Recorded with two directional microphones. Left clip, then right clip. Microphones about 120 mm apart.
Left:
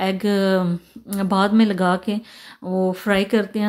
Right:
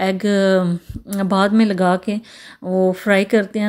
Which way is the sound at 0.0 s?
35° right (ahead or behind).